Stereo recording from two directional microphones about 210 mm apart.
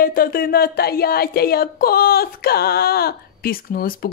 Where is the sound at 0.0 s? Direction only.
45° left (ahead or behind).